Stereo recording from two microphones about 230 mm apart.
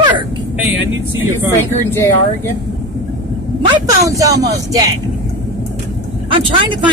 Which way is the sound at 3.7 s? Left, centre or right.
Centre.